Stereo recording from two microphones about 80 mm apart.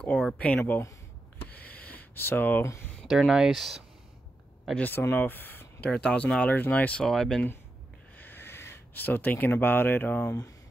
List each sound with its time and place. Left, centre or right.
0.0 s speech: centre
1.4 s a sound: left
3.1 s speech: centre
4.7 s speech: left
7.1 s speech: centre
8.2 s speech: left